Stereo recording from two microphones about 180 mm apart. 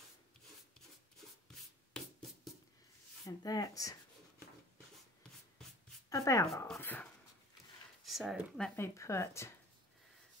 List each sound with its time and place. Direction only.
2.0 s music: 5° left (ahead or behind)
3.3 s speech: 20° left (ahead or behind)
6.0 s speech: 15° left (ahead or behind)